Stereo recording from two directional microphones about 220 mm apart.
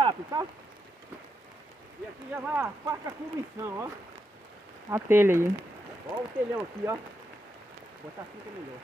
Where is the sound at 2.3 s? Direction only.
10° right (ahead or behind).